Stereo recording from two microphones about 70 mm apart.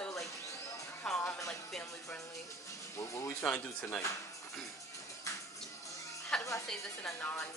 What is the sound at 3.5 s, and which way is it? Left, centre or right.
Speech, left.